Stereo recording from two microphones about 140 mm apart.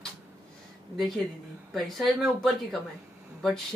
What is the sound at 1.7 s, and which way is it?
A woman's voice, centre (ahead or behind).